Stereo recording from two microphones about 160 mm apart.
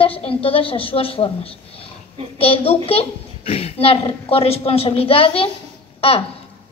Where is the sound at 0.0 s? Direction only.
35° left (ahead or behind).